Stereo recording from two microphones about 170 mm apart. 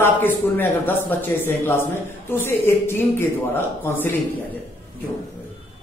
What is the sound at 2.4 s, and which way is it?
Speech, 15° left (ahead or behind).